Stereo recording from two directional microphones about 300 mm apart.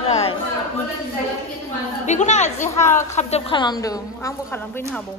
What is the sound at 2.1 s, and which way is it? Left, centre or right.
A woman's voice, left.